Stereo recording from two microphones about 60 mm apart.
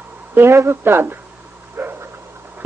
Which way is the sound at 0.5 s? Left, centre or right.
Right.